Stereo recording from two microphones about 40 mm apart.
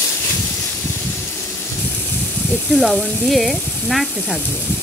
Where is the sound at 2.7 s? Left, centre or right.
Centre.